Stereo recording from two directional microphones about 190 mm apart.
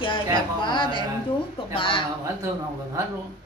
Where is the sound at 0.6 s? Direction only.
25° left (ahead or behind).